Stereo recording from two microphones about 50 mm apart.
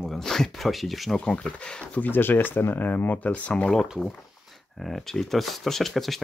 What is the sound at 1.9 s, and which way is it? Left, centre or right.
Speech, left.